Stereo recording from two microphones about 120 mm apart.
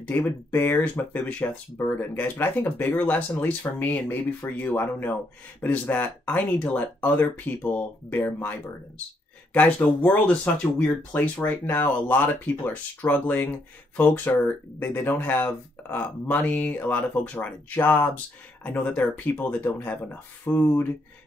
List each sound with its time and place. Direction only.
0.0 s speech: 15° left (ahead or behind)